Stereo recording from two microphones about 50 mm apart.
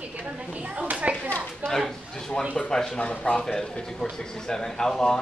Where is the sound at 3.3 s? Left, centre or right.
Centre.